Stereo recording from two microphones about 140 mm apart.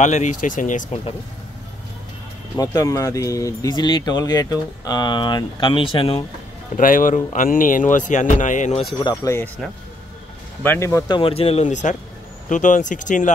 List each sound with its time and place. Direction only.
0.0 s speech: 60° left (ahead or behind)
2.5 s speech: 25° left (ahead or behind); by 6.2 s 40° left (ahead or behind)
6.8 s speech: 75° left (ahead or behind); by 8.8 s 60° left (ahead or behind)
9.2 s speech: 20° left (ahead or behind)
10.6 s speech: 15° left (ahead or behind)
11.1 s speech: 40° left (ahead or behind)
11.6 s speech: 60° left (ahead or behind)